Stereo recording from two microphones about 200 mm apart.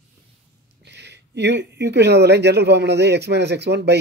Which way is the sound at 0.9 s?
60° right (ahead or behind).